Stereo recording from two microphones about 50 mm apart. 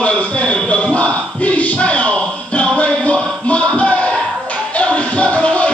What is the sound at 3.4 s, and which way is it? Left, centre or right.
Music, left.